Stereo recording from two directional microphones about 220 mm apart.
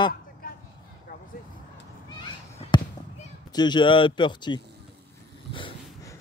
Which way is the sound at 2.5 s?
30° left (ahead or behind).